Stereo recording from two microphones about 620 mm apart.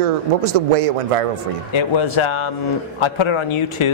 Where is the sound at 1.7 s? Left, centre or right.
Left.